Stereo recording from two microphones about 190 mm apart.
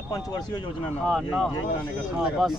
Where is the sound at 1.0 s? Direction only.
Centre (ahead or behind).